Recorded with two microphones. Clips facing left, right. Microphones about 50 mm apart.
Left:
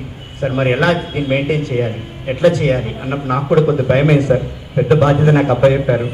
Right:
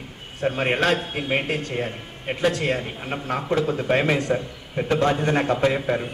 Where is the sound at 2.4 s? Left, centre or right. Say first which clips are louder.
Left 10 dB; left.